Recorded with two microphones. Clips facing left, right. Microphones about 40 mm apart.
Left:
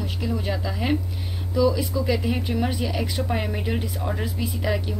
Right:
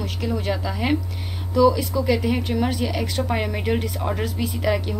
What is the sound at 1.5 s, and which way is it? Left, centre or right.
Speech, right.